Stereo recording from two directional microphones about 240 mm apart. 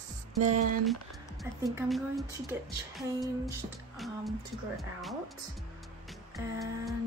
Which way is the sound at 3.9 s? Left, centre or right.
Centre.